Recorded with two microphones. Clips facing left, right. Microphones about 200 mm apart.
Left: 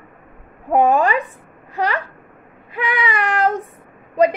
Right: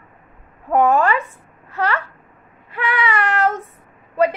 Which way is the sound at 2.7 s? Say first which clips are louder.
Right 1 dB; 15° left (ahead or behind).